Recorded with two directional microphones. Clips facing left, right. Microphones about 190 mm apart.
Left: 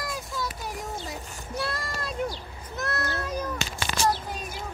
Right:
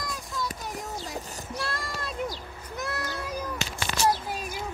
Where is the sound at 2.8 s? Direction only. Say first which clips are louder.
Left 3 dB; 10° right (ahead or behind).